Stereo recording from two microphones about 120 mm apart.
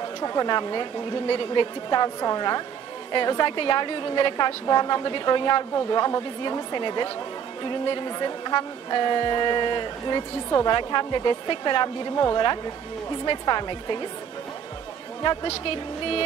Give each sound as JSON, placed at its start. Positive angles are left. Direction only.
{"t": 0.2, "sound": "speech", "side_deg": 35}
{"t": 13.2, "sound": "speech", "side_deg": 35}